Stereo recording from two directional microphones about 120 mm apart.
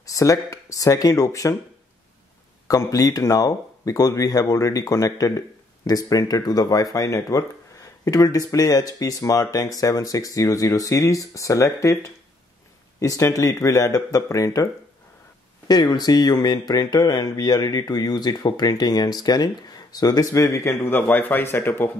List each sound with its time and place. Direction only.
0.0 s speech: 30° left (ahead or behind)
2.7 s speech: 30° left (ahead or behind)
15.7 s speech: 35° left (ahead or behind); by 21.9 s 20° left (ahead or behind)